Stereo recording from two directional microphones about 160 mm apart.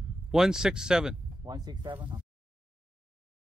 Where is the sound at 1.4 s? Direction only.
25° right (ahead or behind).